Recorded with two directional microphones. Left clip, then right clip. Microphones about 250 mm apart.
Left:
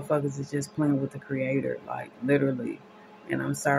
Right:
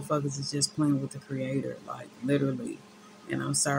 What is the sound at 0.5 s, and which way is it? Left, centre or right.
Speech, centre.